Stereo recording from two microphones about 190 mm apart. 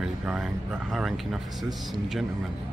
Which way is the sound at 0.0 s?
Centre (ahead or behind).